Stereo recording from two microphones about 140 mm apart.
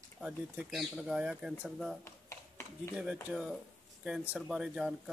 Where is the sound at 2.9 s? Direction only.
5° right (ahead or behind).